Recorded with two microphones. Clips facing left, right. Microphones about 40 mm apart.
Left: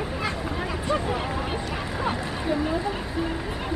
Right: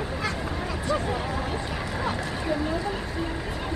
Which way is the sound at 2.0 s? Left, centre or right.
Centre.